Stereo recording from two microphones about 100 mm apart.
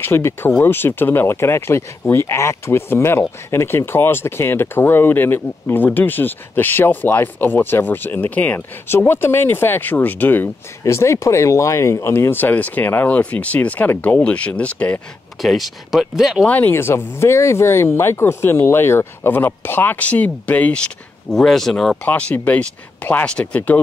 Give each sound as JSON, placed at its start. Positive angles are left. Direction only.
{"t": 0.0, "sound": "speech", "side_deg": 25}
{"t": 15.4, "sound": "speech", "side_deg": 0}
{"t": 16.4, "sound": "speech", "side_deg": 20}
{"t": 22.0, "sound": "speech", "side_deg": 15}